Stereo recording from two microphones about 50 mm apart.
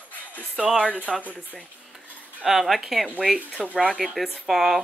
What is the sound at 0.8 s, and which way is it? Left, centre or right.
Speech, right.